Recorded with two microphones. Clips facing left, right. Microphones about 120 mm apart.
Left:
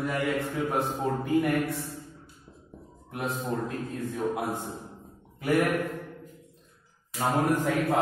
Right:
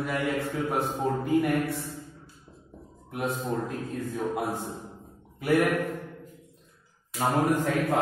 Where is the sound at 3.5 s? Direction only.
15° right (ahead or behind).